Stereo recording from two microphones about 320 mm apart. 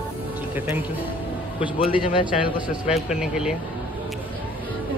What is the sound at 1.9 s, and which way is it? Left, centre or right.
A man's voice, centre.